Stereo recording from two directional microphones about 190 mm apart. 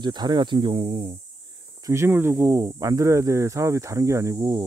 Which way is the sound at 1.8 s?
15° right (ahead or behind).